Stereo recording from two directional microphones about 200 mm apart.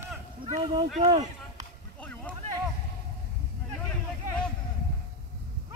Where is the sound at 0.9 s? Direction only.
30° right (ahead or behind).